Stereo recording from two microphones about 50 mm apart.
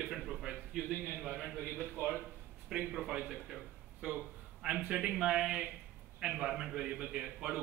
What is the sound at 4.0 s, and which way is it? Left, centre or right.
Speech, right.